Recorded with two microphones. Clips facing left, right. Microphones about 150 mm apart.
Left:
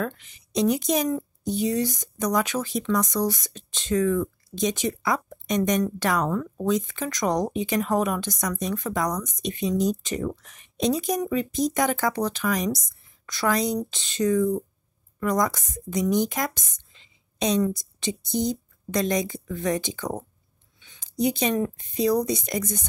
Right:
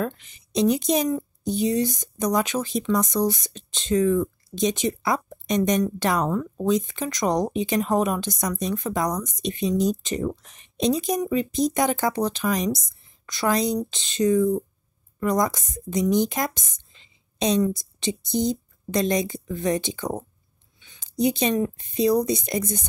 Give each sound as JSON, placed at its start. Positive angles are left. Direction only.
{"t": 0.0, "sound": "a woman's voice", "side_deg": -25}
{"t": 17.6, "sound": "a woman's voice", "side_deg": -25}
{"t": 21.2, "sound": "a woman's voice", "side_deg": -25}